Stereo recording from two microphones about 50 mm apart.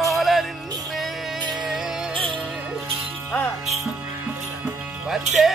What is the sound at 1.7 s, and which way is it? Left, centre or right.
Music, centre.